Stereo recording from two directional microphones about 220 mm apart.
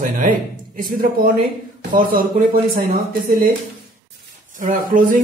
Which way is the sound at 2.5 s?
40° right (ahead or behind).